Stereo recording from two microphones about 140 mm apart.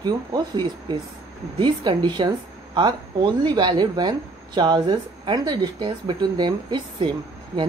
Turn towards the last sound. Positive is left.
turn(degrees=-35)  # may be behind; listen again after turning